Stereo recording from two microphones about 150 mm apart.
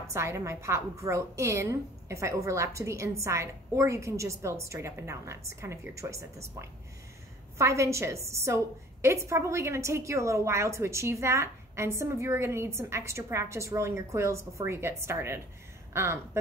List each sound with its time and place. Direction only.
0.0 s a woman's voice: 20° right (ahead or behind)